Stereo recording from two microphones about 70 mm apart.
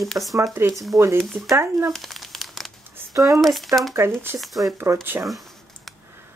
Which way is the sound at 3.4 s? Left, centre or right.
Centre.